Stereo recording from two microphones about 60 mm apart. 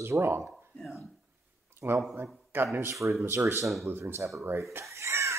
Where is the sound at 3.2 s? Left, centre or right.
Right.